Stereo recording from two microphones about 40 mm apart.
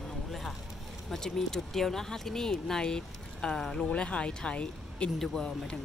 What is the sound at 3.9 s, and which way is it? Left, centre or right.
Speech, left.